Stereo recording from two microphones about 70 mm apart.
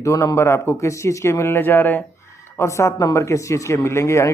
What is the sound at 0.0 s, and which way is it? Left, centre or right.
Speech, left.